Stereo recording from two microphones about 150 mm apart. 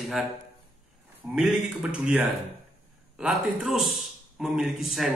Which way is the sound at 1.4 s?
5° right (ahead or behind).